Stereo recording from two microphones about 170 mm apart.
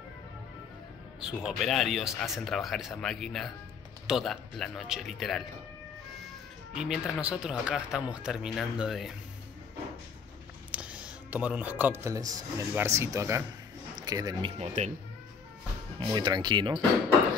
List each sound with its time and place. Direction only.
1.2 s speech: centre (ahead or behind)
6.7 s speech: 5° right (ahead or behind)
10.7 s speech: 5° right (ahead or behind); by 14.5 s 20° right (ahead or behind)
16.0 s speech: 25° right (ahead or behind)